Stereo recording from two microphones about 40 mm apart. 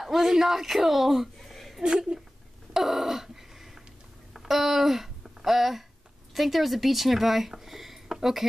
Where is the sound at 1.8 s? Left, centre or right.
Right.